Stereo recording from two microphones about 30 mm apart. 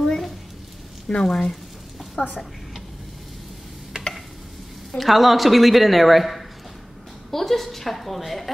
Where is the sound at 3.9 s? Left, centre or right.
Right.